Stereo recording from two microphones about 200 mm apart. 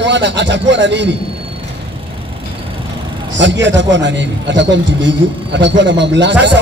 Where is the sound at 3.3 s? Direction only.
65° right (ahead or behind).